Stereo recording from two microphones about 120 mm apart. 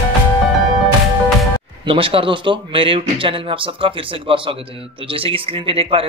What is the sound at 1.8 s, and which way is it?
Speech, 50° right (ahead or behind).